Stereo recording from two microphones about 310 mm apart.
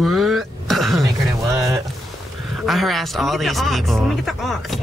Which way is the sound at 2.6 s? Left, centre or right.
Centre.